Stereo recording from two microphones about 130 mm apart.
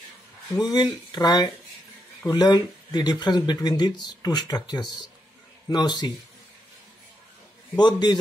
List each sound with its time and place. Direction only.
0.6 s speech: 35° left (ahead or behind)
7.7 s speech: 35° left (ahead or behind)